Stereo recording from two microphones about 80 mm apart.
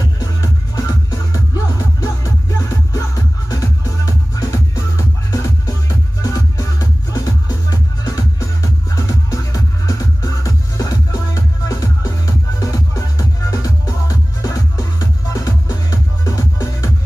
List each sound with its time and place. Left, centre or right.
0.4 s music: left